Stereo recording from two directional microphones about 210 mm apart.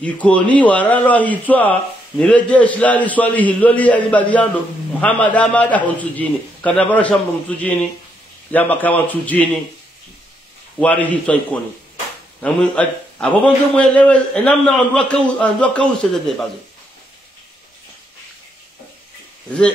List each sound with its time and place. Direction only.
0.0 s a man's voice: 5° left (ahead or behind)
10.8 s a man's voice: 5° left (ahead or behind)
12.4 s a man's voice: 5° left (ahead or behind)